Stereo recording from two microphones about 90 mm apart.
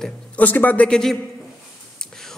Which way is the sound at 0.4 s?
20° left (ahead or behind).